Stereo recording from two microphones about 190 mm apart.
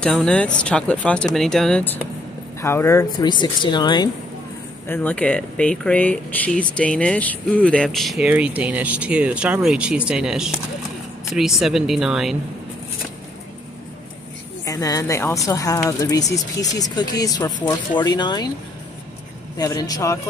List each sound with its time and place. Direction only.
0.0 s speech: 5° left (ahead or behind); by 4.1 s 25° left (ahead or behind)
4.8 s speech: 10° left (ahead or behind)
14.6 s a woman's voice: 15° left (ahead or behind)
19.5 s speech: 20° left (ahead or behind)